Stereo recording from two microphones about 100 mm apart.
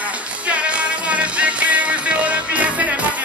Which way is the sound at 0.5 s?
10° right (ahead or behind).